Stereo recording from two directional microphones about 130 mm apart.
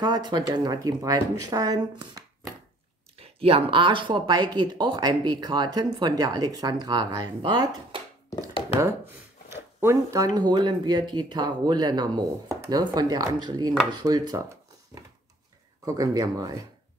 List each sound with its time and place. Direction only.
0.0 s speech: 35° right (ahead or behind)
3.2 s speech: 45° right (ahead or behind)
8.7 s speech: 25° right (ahead or behind)
15.8 s speech: 25° right (ahead or behind)